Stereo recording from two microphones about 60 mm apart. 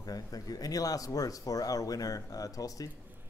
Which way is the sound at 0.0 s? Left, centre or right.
Left.